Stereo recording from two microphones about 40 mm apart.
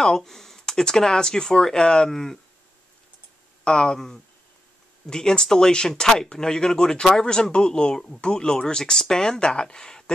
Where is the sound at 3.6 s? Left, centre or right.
Centre.